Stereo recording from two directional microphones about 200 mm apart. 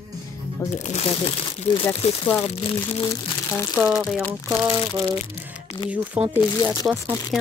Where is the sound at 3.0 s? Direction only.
15° left (ahead or behind).